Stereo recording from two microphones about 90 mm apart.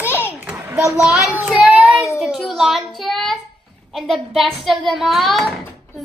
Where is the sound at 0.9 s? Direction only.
10° right (ahead or behind).